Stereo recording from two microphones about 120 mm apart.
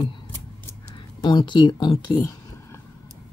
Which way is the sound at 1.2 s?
40° left (ahead or behind).